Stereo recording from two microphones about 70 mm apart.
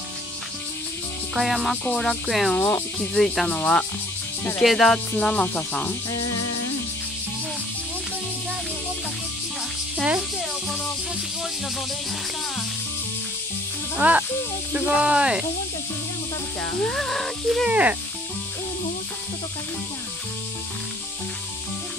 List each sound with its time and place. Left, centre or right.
1.3 s speech: centre
2.5 s speech: centre
14.0 s speech: right
16.8 s speech: centre
17.6 s speech: centre